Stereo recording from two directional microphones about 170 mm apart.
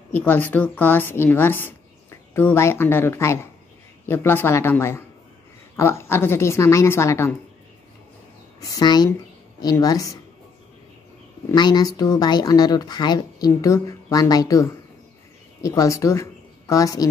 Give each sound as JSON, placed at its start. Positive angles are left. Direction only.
{"t": 0.1, "sound": "a woman's voice", "side_deg": 10}
{"t": 8.5, "sound": "a woman's voice", "side_deg": 25}
{"t": 11.5, "sound": "a woman's voice", "side_deg": 25}